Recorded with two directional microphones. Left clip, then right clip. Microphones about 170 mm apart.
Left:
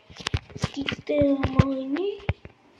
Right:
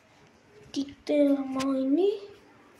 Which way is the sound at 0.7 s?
15° right (ahead or behind).